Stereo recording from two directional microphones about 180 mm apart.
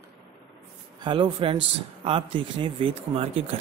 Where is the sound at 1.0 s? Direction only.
25° right (ahead or behind).